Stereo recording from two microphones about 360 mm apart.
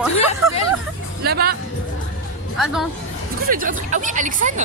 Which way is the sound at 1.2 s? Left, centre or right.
Right.